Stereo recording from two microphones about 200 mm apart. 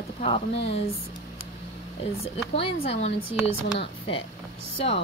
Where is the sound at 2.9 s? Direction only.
30° left (ahead or behind).